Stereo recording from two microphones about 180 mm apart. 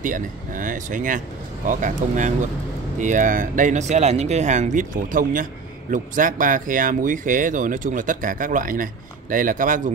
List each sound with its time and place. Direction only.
0.0 s speech: 45° right (ahead or behind)